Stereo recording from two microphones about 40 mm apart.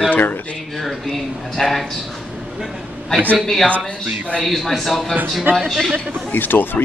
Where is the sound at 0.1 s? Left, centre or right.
Left.